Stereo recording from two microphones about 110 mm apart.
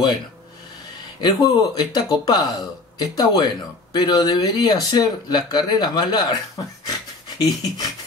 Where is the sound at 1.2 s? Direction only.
40° left (ahead or behind).